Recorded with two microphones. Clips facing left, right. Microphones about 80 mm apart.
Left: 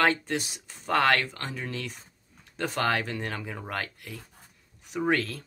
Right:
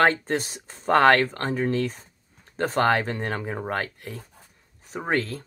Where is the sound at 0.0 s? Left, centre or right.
Right.